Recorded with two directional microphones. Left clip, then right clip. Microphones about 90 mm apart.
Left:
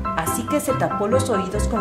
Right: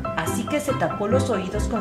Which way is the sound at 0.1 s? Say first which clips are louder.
Left 3 dB; 25° left (ahead or behind).